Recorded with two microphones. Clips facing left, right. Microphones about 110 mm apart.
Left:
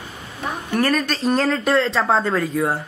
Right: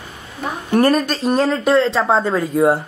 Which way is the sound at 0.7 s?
30° right (ahead or behind).